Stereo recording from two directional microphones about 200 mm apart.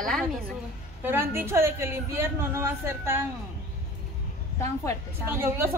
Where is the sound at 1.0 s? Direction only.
10° right (ahead or behind).